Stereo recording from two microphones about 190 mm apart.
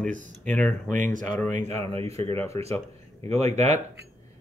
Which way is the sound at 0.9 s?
45° right (ahead or behind).